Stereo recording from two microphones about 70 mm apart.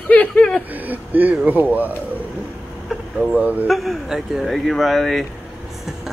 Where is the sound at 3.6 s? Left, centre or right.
Centre.